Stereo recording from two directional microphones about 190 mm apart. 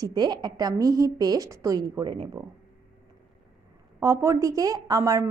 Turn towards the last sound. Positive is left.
turn(degrees=-15)  # may be behind; listen again after turning